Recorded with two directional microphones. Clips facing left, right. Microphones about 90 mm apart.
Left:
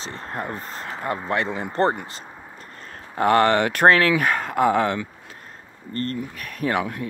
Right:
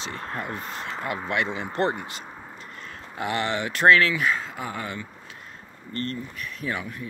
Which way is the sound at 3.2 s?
55° left (ahead or behind).